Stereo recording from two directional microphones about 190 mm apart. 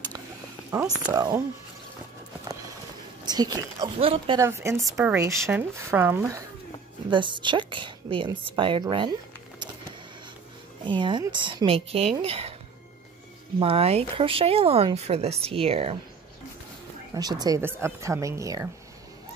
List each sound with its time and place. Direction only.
1.1 s a woman's voice: 20° right (ahead or behind)
3.3 s a woman's voice: 20° right (ahead or behind)
4.4 s speech: 15° right (ahead or behind)
7.1 s a woman's voice: 25° right (ahead or behind)
10.9 s a woman's voice: 25° right (ahead or behind)
13.6 s speech: 30° right (ahead or behind)
17.1 s speech: 20° right (ahead or behind)